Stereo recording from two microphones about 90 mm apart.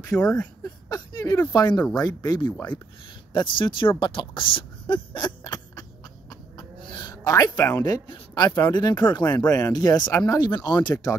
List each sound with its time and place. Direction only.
0.1 s speech: 10° left (ahead or behind)
0.7 s speech: 45° left (ahead or behind)
3.3 s speech: 60° left (ahead or behind)
4.0 s a sound: 65° left (ahead or behind)
7.2 s speech: 45° left (ahead or behind)
8.1 s speech: 55° left (ahead or behind)